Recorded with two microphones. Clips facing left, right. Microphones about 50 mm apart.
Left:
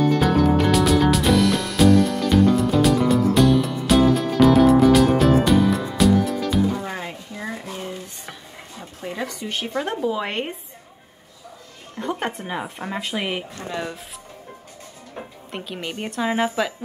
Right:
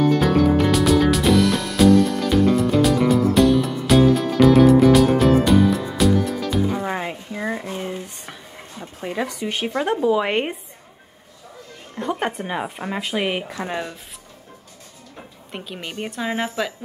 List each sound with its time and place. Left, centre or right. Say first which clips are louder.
0.2 s music: right 1 dB; centre
6.9 s a sound: right 5 dB; centre
8.0 s a sound: right 1 dB; centre
9.1 s speech: right 3 dB; centre
11.9 s speech: right 2 dB; centre
15.5 s speech: left 1 dB; centre